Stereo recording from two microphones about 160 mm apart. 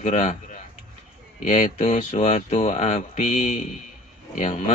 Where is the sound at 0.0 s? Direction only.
45° left (ahead or behind).